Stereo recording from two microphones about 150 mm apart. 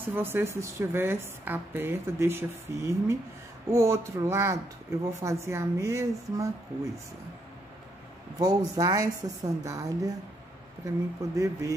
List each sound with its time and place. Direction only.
0.0 s a woman's voice: 15° right (ahead or behind)
8.4 s speech: 25° right (ahead or behind)
11.3 s speech: 20° right (ahead or behind)